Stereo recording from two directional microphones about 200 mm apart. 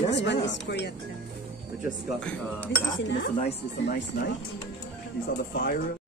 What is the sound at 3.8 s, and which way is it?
Speech, 60° left (ahead or behind).